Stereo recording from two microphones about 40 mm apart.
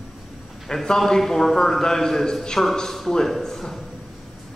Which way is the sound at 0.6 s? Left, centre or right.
Centre.